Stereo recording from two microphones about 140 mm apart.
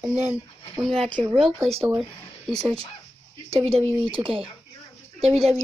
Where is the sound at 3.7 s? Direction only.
45° right (ahead or behind).